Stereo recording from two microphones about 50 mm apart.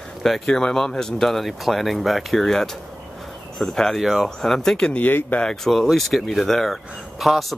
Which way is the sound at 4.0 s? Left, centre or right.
Centre.